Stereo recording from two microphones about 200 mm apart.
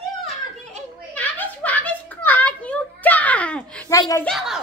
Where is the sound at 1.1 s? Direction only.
5° left (ahead or behind).